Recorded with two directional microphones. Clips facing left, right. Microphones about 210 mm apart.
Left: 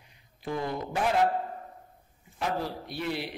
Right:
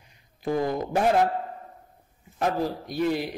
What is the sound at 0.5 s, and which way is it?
Speech, 45° right (ahead or behind).